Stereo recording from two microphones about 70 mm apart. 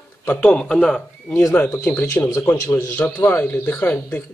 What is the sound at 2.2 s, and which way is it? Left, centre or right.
Speech, left.